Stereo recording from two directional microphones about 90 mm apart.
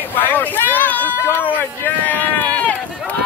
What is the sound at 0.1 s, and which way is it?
Speech, 20° left (ahead or behind).